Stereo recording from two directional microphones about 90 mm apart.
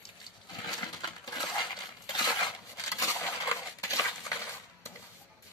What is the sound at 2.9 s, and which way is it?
Dishes, 35° left (ahead or behind).